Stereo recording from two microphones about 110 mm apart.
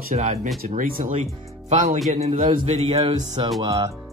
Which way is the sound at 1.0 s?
90° right.